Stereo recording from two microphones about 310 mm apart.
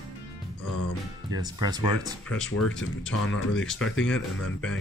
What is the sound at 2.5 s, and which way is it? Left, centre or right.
Speech, left.